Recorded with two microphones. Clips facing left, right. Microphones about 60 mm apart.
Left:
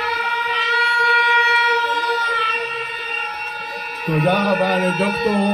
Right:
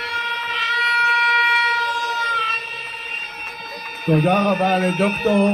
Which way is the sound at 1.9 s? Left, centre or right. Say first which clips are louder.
Left 2 dB; left.